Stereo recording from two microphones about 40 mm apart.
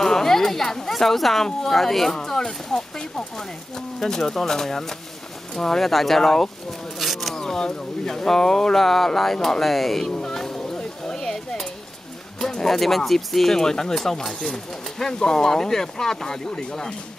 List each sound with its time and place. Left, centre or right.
0.0 s speech: centre
2.1 s speech: centre
5.8 s speech: centre
10.1 s a sound: centre
12.4 s speech: centre